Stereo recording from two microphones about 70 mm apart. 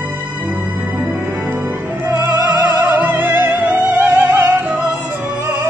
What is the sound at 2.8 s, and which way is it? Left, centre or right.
Music, right.